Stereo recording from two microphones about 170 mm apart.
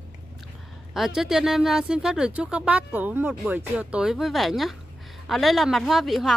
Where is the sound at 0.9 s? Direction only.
Centre (ahead or behind).